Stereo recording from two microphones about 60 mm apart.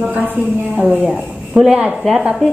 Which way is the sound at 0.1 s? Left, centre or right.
Right.